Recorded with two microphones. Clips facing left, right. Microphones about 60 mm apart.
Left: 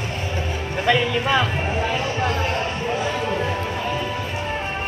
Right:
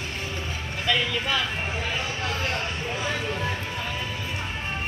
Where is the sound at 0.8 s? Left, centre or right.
Left.